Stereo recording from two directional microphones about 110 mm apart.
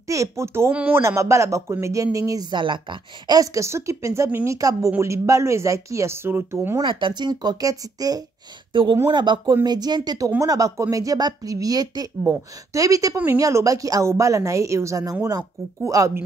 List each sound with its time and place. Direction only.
0.0 s a woman's voice: 30° right (ahead or behind)
1.0 s speech: 25° right (ahead or behind); by 3.3 s 50° right (ahead or behind)
3.3 s speech: 25° right (ahead or behind)
6.8 s speech: 50° right (ahead or behind); by 13.1 s 30° right (ahead or behind)
13.1 s a woman's voice: 15° right (ahead or behind)
13.4 s speech: 30° right (ahead or behind)